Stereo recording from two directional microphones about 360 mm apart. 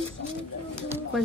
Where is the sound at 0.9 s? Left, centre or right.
Centre.